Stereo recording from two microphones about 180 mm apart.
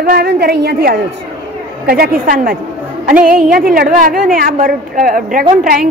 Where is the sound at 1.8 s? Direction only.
55° right (ahead or behind).